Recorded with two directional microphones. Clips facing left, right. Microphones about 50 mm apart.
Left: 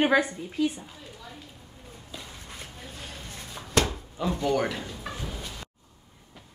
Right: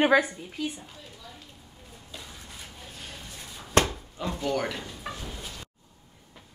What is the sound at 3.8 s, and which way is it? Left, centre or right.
Chopping, right.